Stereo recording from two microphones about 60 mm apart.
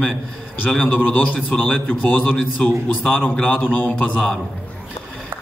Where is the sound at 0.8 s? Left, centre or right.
Left.